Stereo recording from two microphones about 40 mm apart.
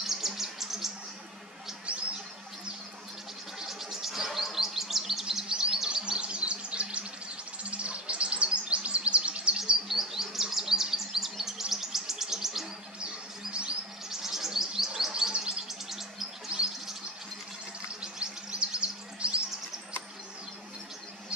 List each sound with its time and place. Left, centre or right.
0.0 s bird: centre
1.9 s a sound: right
3.5 s chirp: centre
5.5 s chirp: centre
6.1 s bird: right
7.7 s chirp: right
9.8 s chirp: centre
11.7 s insect: centre
13.0 s a sound: right
14.0 s chirp: centre
16.4 s chirp: right
18.0 s bird: right